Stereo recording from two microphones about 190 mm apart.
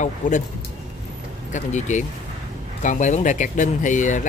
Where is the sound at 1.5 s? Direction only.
40° left (ahead or behind).